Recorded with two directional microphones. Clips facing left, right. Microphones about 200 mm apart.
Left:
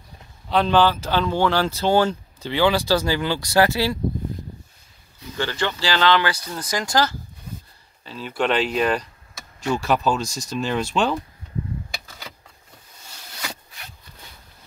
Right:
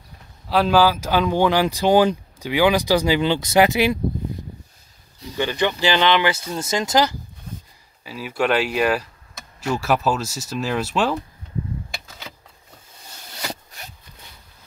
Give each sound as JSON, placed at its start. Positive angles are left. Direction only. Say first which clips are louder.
{"t": 0.5, "sound": "speech", "louder": "right 1 dB", "side_deg": -5}
{"t": 5.3, "sound": "speech", "louder": "right 4 dB", "side_deg": -15}
{"t": 8.0, "sound": "speech", "louder": "right 1 dB", "side_deg": -10}
{"t": 11.9, "sound": "a sound", "louder": "even", "side_deg": 0}